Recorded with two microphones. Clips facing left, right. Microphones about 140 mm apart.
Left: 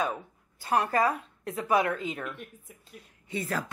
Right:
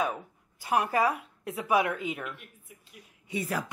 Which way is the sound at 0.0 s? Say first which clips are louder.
Even; 10° right (ahead or behind).